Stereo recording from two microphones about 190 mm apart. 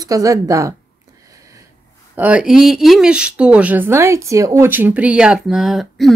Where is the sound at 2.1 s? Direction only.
5° right (ahead or behind).